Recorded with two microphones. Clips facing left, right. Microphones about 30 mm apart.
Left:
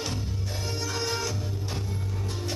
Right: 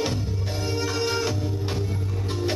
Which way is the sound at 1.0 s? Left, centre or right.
Right.